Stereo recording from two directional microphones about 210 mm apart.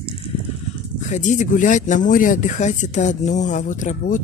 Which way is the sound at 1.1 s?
35° left (ahead or behind).